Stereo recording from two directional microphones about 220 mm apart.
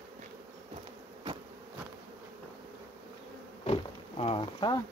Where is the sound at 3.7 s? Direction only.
25° left (ahead or behind).